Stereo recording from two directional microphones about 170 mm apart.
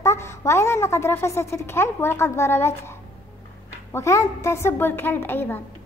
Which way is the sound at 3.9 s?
15° left (ahead or behind).